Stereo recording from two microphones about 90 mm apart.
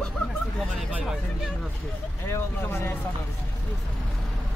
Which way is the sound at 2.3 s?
25° left (ahead or behind).